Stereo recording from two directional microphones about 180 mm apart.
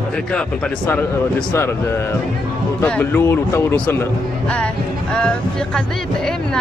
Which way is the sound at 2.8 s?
10° left (ahead or behind).